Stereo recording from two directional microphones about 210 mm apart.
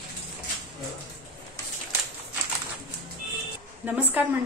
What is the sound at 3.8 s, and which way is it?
Speech, 10° right (ahead or behind).